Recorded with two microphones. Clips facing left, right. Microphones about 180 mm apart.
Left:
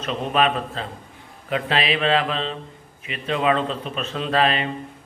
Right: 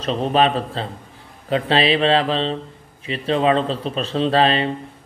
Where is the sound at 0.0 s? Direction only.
30° right (ahead or behind).